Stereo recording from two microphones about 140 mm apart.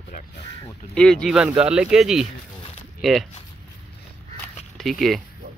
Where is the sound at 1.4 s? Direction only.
5° right (ahead or behind).